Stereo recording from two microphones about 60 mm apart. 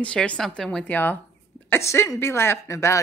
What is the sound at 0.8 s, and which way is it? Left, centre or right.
Speech, left.